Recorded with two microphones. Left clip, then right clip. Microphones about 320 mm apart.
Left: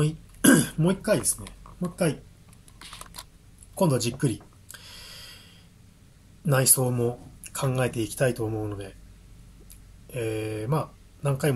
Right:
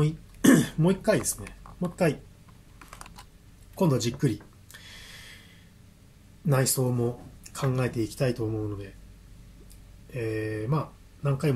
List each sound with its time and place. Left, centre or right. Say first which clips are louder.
0.0 s speech: left 1 dB; centre
3.7 s gasp: left 2 dB; centre
6.4 s speech: left 2 dB; centre
10.1 s speech: left 1 dB; centre